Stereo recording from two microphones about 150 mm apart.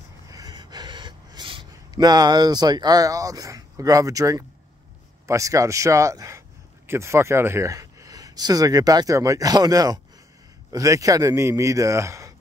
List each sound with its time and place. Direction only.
0.3 s gasp: 25° right (ahead or behind)
5.2 s speech: 20° right (ahead or behind)